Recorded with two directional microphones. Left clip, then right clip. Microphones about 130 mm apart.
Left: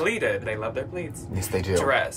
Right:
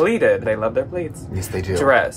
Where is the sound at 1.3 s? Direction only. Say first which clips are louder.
Left 1 dB; 15° left (ahead or behind).